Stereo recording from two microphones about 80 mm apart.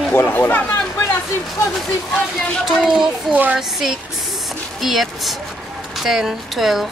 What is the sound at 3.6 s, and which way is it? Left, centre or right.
Speech, centre.